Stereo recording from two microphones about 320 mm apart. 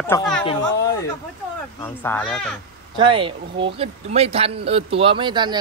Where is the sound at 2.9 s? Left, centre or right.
Centre.